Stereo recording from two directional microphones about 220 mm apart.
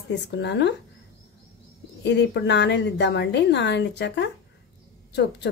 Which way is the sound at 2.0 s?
50° left (ahead or behind).